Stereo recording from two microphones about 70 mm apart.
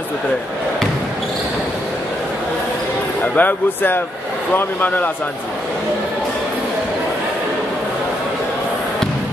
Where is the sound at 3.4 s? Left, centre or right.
Left.